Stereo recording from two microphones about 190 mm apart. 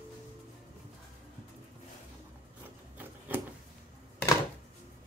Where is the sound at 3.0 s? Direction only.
10° right (ahead or behind).